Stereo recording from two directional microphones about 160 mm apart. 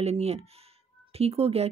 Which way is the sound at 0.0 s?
40° right (ahead or behind).